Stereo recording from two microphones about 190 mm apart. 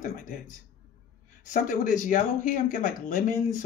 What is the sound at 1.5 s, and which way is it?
A man's voice, 45° left (ahead or behind).